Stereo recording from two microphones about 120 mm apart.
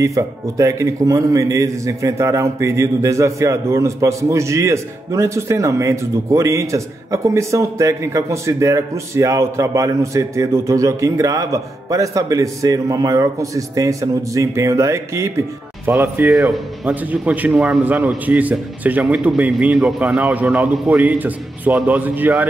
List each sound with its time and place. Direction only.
0.0 s a man's voice: 25° right (ahead or behind)